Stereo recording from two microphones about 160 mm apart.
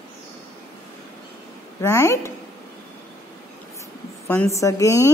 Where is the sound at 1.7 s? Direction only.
15° left (ahead or behind).